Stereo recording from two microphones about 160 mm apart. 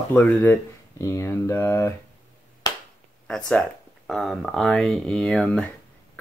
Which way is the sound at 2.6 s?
25° left (ahead or behind).